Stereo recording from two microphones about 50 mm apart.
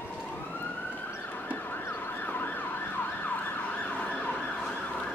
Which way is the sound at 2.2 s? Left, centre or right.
Left.